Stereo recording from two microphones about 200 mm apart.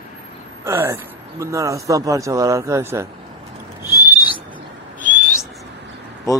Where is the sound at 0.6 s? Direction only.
15° right (ahead or behind).